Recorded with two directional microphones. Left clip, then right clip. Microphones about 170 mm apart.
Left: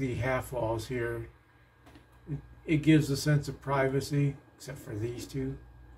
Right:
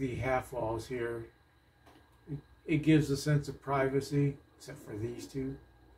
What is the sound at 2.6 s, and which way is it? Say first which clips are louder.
Speech: left 2 dB; 30° left (ahead or behind).